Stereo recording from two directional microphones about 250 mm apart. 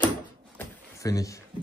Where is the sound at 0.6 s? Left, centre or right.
Centre.